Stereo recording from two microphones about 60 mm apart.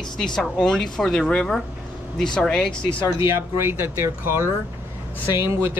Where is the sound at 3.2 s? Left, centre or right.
Right.